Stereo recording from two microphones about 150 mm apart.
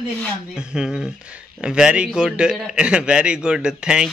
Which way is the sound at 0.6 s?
5° right (ahead or behind).